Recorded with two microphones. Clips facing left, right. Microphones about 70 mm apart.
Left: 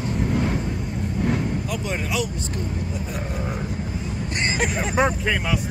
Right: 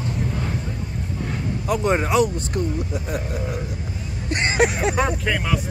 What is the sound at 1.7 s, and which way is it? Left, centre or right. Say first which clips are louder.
Speech: right 13 dB; right.